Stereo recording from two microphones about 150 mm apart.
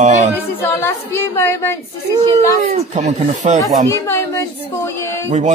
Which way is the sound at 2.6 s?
50° right (ahead or behind).